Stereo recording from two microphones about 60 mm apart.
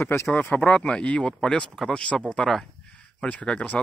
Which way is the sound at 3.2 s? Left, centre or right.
Centre.